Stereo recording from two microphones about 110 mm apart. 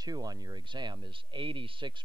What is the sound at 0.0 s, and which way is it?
Speech, 35° right (ahead or behind).